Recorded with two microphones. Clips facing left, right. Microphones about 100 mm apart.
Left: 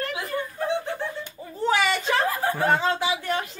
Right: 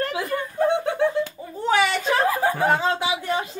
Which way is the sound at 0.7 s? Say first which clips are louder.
Right 6 dB; 60° right (ahead or behind).